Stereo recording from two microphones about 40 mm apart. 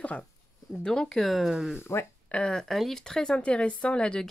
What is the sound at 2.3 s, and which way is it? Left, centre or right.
Speech, left.